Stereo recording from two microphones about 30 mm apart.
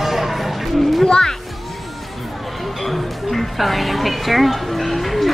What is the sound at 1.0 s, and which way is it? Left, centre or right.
Music, left.